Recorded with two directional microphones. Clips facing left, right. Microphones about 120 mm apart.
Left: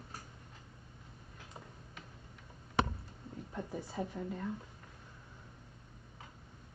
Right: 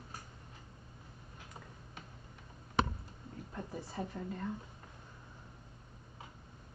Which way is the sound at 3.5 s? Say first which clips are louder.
Left 2 dB; 15° left (ahead or behind).